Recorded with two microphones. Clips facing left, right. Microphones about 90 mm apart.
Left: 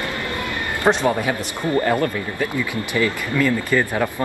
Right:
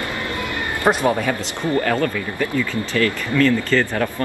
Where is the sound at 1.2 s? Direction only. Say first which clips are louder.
Even; 15° left (ahead or behind).